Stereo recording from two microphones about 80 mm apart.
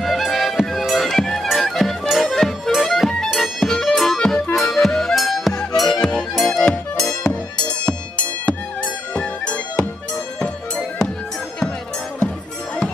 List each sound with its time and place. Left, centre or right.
0.0 s music: centre